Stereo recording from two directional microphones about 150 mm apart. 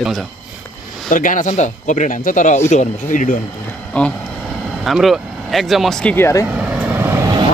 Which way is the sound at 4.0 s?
10° left (ahead or behind).